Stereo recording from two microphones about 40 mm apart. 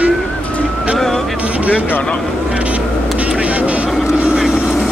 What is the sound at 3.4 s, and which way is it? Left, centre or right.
Vehicle, right.